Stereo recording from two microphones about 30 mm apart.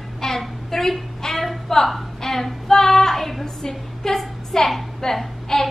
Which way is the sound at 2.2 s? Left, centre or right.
Centre.